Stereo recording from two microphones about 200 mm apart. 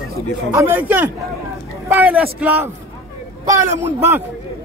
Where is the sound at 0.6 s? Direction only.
10° right (ahead or behind).